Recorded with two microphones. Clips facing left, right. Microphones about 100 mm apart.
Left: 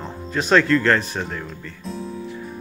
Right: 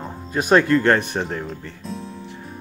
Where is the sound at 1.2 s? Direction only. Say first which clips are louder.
Right 3 dB; 30° right (ahead or behind).